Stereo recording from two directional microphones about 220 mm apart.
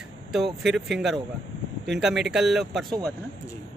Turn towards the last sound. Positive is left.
turn(degrees=0)  # may be behind; listen again after turning